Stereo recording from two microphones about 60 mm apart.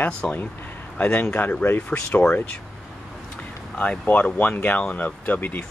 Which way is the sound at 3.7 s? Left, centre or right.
Left.